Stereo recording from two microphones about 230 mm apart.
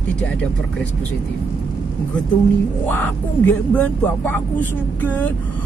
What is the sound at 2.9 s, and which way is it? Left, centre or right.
Speech, centre.